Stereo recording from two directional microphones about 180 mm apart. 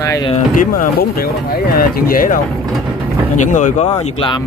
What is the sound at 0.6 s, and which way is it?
Speech, 55° left (ahead or behind).